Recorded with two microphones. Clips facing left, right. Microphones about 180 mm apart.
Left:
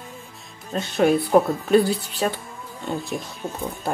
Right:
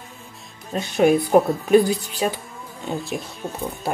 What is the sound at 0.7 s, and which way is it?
Speech, 10° right (ahead or behind).